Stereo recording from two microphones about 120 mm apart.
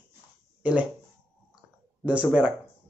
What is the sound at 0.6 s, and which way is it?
Speech, 10° right (ahead or behind).